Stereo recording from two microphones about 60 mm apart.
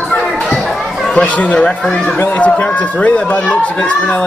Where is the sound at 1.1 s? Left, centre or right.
Left.